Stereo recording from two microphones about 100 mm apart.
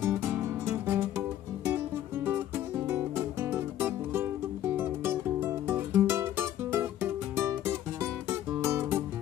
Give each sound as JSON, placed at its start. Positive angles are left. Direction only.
{"t": 0.0, "sound": "music", "side_deg": -25}
{"t": 2.9, "sound": "music", "side_deg": -25}